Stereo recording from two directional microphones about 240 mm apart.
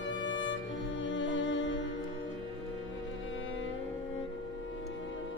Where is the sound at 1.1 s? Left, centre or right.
Left.